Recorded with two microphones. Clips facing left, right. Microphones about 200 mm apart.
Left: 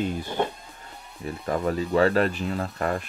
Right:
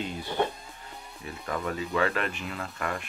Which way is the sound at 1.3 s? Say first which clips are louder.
Left 6 dB; 35° left (ahead or behind).